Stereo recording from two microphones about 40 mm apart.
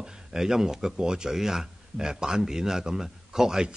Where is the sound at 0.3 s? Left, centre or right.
Centre.